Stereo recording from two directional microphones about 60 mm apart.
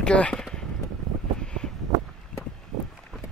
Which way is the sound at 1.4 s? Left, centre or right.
Centre.